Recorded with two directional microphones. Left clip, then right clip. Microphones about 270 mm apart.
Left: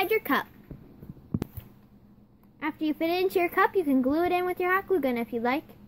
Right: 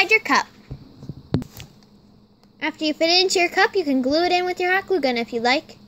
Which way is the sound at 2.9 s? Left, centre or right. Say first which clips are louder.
Right 9 dB; right.